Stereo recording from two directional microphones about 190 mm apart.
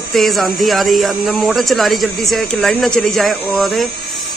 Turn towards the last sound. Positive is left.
turn(degrees=0)  # may be behind; listen again after turning